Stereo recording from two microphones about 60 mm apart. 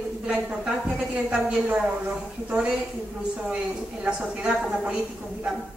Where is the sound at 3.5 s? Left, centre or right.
Centre.